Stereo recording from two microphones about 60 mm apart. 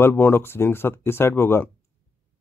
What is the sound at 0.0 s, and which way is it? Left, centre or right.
Speech, left.